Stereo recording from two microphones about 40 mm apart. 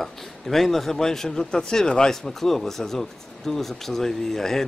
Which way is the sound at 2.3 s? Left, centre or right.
Centre.